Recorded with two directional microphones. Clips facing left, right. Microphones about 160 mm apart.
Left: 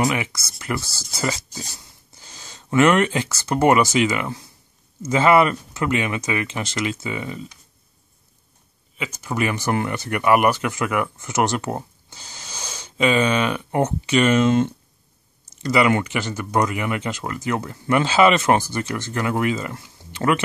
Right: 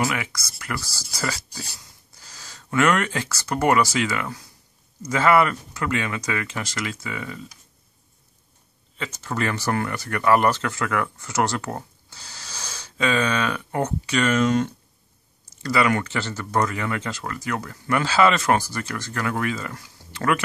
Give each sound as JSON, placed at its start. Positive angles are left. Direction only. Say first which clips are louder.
{"t": 0.0, "sound": "speech", "louder": "left 4 dB", "side_deg": 25}
{"t": 8.9, "sound": "speech", "louder": "left 2 dB", "side_deg": 10}